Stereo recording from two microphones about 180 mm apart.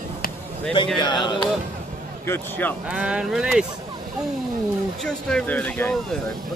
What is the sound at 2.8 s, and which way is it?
Speech, 5° right (ahead or behind).